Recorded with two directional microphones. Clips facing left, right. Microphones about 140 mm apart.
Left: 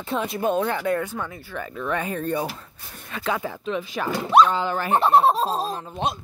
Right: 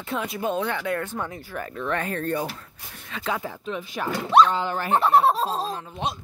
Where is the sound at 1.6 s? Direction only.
5° left (ahead or behind).